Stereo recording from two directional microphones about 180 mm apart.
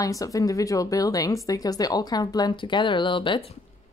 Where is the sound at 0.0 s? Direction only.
20° left (ahead or behind).